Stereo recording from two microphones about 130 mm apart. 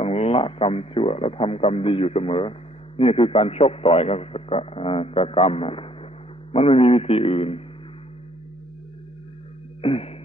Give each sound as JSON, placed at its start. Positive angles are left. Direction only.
{"t": 0.0, "sound": "a man's voice", "side_deg": 55}
{"t": 9.8, "sound": "music", "side_deg": 50}